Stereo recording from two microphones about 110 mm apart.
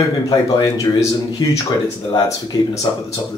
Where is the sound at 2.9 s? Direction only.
45° left (ahead or behind).